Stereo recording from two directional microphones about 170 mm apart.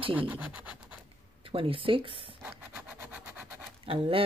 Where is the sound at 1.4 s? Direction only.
30° right (ahead or behind).